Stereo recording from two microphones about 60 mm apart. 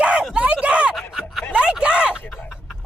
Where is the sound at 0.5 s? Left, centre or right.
Right.